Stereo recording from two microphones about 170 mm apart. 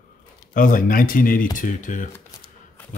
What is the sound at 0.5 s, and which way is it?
Speech, 55° left (ahead or behind).